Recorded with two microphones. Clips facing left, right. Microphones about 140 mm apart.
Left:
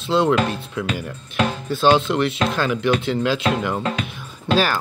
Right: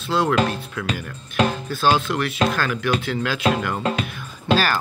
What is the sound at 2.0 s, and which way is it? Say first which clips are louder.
Speech: left 2 dB; 25° left (ahead or behind).